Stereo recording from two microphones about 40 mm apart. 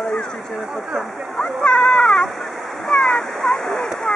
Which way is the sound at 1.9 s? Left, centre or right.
Centre.